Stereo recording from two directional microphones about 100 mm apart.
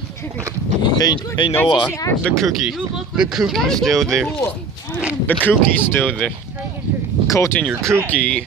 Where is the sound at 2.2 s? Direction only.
Centre (ahead or behind).